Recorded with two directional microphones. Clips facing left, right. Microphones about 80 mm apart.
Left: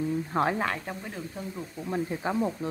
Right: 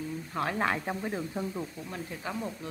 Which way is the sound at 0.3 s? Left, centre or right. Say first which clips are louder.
Left 5 dB; left.